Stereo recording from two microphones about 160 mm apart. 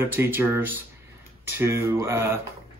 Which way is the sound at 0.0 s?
15° right (ahead or behind).